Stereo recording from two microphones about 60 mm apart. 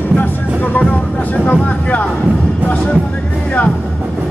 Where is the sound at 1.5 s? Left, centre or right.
Left.